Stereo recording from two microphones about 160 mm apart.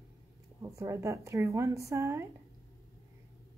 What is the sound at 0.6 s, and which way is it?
Speech, 20° right (ahead or behind).